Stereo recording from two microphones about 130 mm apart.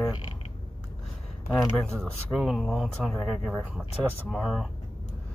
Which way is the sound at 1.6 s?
Centre (ahead or behind).